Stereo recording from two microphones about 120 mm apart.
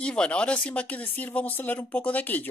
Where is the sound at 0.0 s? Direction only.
10° left (ahead or behind).